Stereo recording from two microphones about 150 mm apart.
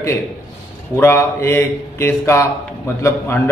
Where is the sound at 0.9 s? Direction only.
15° left (ahead or behind).